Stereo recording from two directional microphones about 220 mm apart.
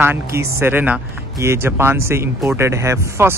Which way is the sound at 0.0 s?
10° right (ahead or behind).